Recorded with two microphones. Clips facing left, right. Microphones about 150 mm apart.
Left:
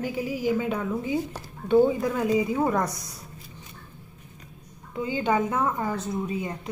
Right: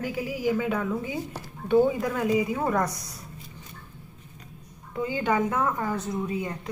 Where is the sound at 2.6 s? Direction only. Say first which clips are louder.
Left 1 dB; 10° left (ahead or behind).